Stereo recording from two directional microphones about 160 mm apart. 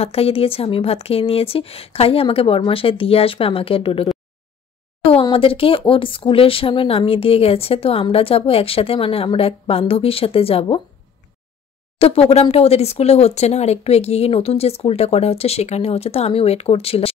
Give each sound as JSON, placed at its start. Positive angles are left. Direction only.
{"t": 0.0, "sound": "speech", "side_deg": 40}
{"t": 5.2, "sound": "speech", "side_deg": 35}
{"t": 12.0, "sound": "speech", "side_deg": 40}